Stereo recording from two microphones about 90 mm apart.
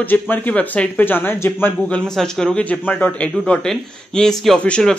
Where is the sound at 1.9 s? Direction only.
5° left (ahead or behind).